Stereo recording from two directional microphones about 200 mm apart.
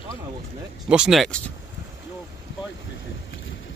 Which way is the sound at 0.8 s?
5° right (ahead or behind).